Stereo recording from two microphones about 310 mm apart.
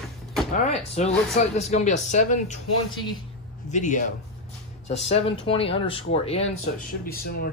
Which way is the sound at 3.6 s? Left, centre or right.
Left.